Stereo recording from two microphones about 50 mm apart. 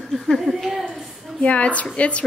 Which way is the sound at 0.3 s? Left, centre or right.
Centre.